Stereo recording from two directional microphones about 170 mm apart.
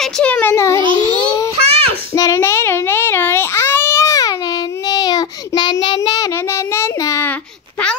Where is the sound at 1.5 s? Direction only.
35° right (ahead or behind).